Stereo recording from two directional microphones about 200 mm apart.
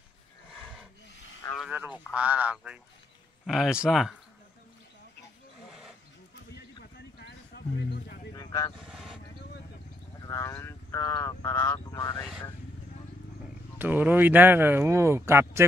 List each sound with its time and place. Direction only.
0.5 s wild animals: centre (ahead or behind)
1.7 s speech: 10° right (ahead or behind)
5.7 s wild animals: centre (ahead or behind)
6.5 s a sound: 50° left (ahead or behind)
8.3 s vehicle: 15° left (ahead or behind)
8.8 s vehicle: centre (ahead or behind)
10.2 s speech: 15° left (ahead or behind)
13.7 s speech: 10° right (ahead or behind)